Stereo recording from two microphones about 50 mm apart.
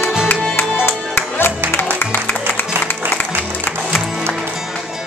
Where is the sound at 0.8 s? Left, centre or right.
Left.